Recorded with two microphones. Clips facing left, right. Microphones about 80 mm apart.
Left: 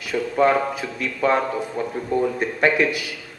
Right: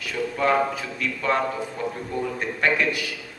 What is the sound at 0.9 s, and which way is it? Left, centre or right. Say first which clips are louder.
A man's voice: left 5 dB; centre.